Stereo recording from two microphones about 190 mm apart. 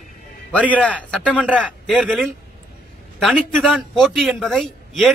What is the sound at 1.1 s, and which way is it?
Speech, 5° left (ahead or behind).